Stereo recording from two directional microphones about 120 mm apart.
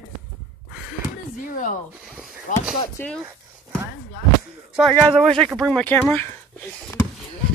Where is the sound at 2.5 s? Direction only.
90° left.